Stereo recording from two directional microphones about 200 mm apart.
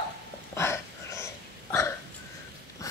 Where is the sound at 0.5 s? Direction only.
15° left (ahead or behind).